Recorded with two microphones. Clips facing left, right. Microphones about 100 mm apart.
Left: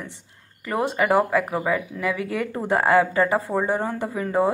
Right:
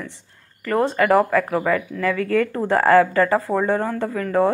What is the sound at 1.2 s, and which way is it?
Speech, 25° left (ahead or behind).